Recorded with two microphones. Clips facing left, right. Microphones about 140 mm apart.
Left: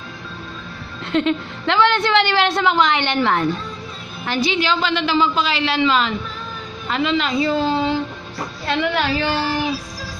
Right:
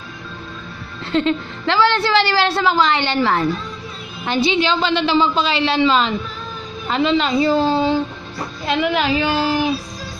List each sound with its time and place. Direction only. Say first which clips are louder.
1.1 s a woman's voice: right 1 dB; centre (ahead or behind)
4.3 s a woman's voice: right 2 dB; 25° right (ahead or behind)
8.6 s a woman's voice: right 2 dB; 15° right (ahead or behind)